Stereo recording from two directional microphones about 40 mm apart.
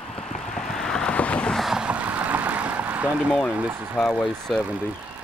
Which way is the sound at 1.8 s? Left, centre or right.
Right.